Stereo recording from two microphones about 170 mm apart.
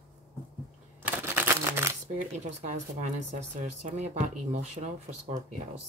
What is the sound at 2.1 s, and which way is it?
Speech, 45° right (ahead or behind).